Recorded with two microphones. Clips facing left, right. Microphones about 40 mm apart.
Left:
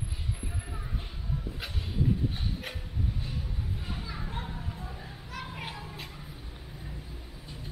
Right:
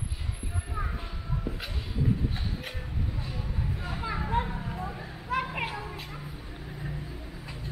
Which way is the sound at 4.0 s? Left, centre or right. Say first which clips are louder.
Right 9 dB; right.